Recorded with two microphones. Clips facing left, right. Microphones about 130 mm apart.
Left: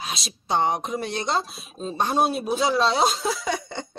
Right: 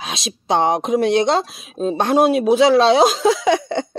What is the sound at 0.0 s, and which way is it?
Speech, 90° right.